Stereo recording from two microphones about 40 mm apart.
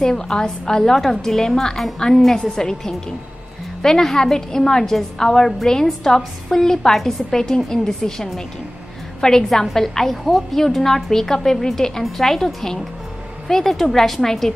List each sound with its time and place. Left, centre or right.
0.0 s a woman's voice: centre